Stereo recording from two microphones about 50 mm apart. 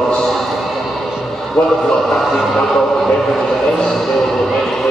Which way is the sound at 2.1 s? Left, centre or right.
Centre.